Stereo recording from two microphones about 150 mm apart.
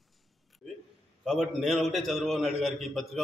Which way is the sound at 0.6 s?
Centre (ahead or behind).